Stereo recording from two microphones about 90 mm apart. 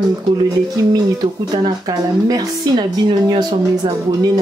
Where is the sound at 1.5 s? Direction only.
45° right (ahead or behind).